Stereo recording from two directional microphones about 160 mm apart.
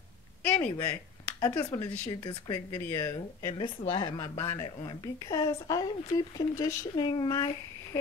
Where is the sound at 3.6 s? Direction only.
30° left (ahead or behind).